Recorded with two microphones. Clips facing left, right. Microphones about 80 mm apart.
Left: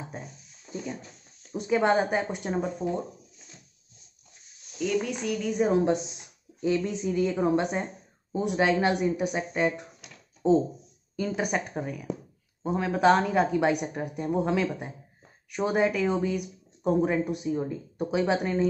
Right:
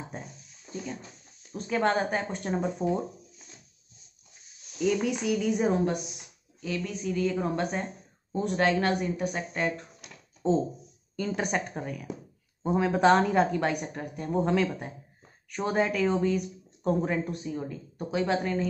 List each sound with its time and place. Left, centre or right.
0.1 s a sound: centre
1.5 s speech: centre
2.5 s a woman's voice: centre
4.7 s a woman's voice: centre
5.9 s a woman's voice: left